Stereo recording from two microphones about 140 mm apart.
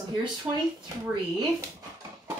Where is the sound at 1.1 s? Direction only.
30° right (ahead or behind).